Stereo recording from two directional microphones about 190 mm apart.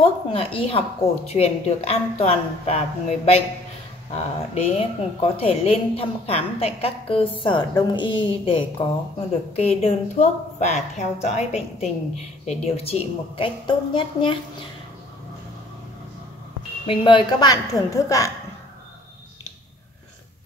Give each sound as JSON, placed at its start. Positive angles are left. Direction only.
{"t": 0.0, "sound": "a woman's voice", "side_deg": 30}
{"t": 16.8, "sound": "speech", "side_deg": 25}